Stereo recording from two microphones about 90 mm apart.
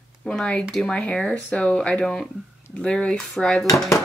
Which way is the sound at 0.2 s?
10° left (ahead or behind).